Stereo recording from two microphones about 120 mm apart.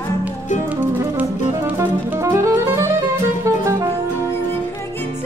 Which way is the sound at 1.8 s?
25° right (ahead or behind).